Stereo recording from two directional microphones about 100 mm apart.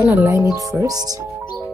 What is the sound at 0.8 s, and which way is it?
Speech, 40° right (ahead or behind).